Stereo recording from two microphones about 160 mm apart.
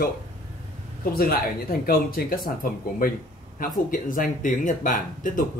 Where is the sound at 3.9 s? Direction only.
60° left (ahead or behind).